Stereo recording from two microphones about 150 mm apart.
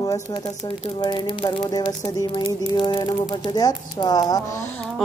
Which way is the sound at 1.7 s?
25° left (ahead or behind).